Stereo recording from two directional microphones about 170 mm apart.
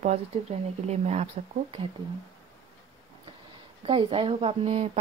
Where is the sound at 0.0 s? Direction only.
40° right (ahead or behind).